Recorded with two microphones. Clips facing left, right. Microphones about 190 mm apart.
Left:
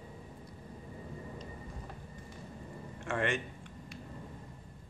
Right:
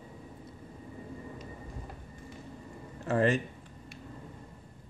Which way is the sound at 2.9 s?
35° right (ahead or behind).